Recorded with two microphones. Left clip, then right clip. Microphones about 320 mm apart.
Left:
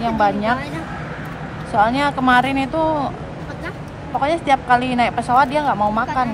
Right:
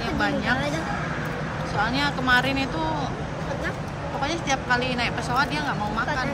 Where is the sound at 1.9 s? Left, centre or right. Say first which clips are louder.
Left 6 dB; centre.